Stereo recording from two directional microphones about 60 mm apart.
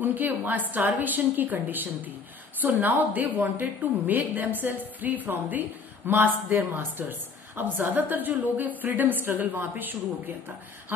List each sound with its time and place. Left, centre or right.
0.0 s a woman's voice: right